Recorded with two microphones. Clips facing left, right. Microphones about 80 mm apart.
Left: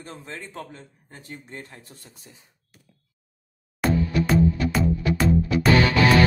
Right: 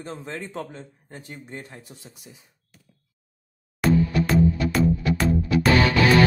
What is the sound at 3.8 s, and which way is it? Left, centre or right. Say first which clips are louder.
Music: right 2 dB; centre.